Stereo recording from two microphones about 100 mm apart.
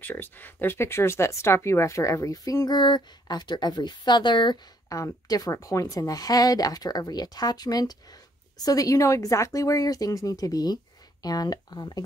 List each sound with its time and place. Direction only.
0.0 s speech: 20° left (ahead or behind); by 4.6 s 50° left (ahead or behind)
4.8 s speech: 35° left (ahead or behind)